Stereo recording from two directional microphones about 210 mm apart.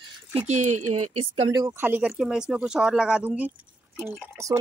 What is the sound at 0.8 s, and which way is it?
Speech, 90° right.